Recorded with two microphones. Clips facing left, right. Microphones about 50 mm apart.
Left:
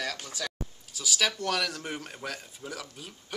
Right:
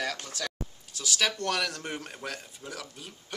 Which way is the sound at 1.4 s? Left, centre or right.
Centre.